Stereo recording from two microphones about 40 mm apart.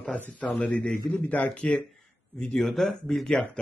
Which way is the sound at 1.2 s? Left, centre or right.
Left.